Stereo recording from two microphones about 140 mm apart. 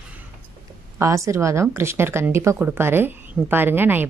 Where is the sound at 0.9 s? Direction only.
20° right (ahead or behind).